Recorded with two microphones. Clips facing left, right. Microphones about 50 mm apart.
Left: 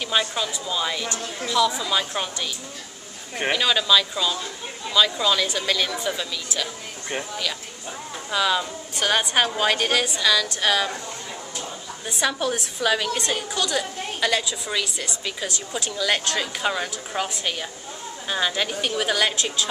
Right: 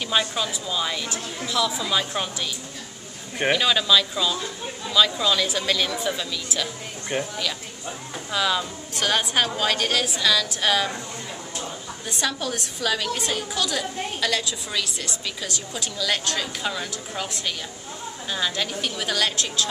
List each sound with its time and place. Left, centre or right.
0.0 s a woman's voice: centre
3.3 s a woman's voice: centre
12.1 s a woman's voice: centre
13.2 s a woman's voice: centre
16.6 s a woman's voice: centre